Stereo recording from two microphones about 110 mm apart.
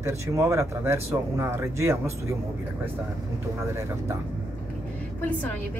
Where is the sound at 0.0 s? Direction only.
25° right (ahead or behind).